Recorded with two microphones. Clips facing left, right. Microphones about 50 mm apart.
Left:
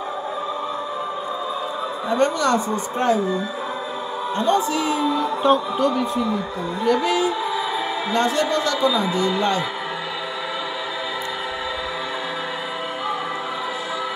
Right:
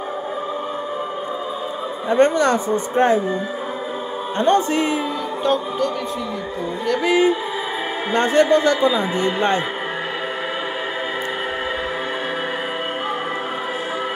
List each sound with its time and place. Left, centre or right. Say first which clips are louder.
2.0 s a man's voice: right 4 dB; right
4.4 s a man's voice: right 3 dB; right
5.4 s a man's voice: left 1 dB; centre
7.0 s a man's voice: right 4 dB; right